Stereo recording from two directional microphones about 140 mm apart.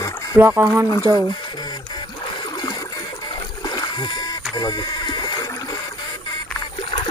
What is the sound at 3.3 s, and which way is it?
Boat, 30° left (ahead or behind).